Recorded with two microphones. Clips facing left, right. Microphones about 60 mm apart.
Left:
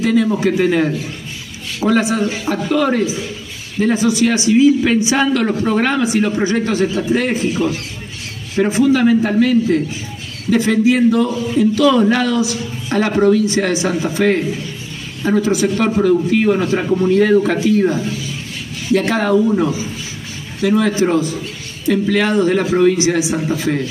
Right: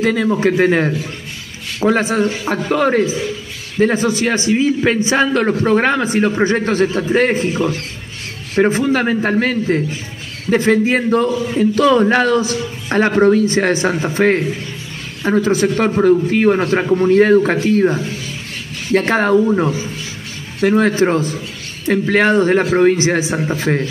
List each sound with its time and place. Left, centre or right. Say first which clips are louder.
0.0 s a man's voice: even; right
19.4 s a man's voice: even; right
20.6 s a man's voice: right 1 dB; right